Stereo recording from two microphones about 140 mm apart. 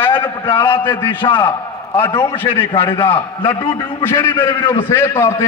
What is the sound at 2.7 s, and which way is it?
Speech, 35° left (ahead or behind).